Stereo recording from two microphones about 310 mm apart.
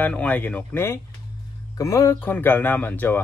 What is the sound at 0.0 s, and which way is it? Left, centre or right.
Speech, centre.